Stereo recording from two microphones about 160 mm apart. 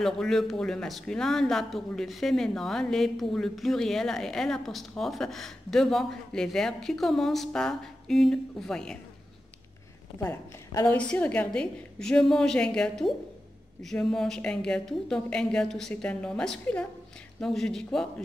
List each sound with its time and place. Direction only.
0.0 s speech: centre (ahead or behind)
10.2 s a woman's voice: 20° left (ahead or behind)
10.9 s speech: 10° left (ahead or behind)